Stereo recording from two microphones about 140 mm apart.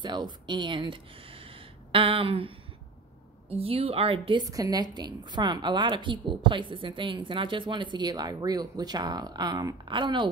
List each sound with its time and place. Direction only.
0.0 s speech: 35° right (ahead or behind)
3.5 s a woman's voice: 45° right (ahead or behind)
4.5 s a woman's voice: 25° right (ahead or behind)